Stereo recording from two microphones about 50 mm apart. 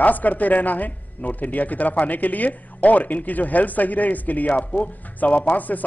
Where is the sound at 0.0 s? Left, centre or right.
Left.